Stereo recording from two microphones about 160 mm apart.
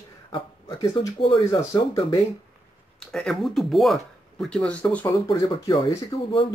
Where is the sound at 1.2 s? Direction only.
35° left (ahead or behind).